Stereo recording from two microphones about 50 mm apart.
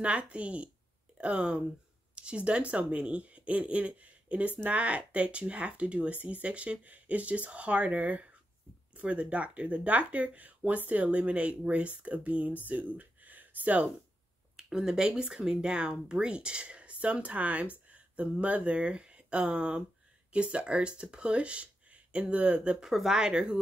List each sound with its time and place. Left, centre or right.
0.0 s speech: right
14.6 s speech: centre
22.8 s speech: centre